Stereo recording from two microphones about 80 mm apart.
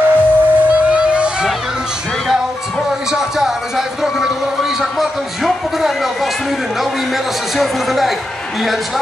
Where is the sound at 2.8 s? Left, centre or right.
Centre.